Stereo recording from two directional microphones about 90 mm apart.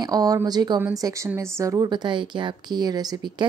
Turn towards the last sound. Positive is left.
turn(degrees=-45)  # may be behind; listen again after turning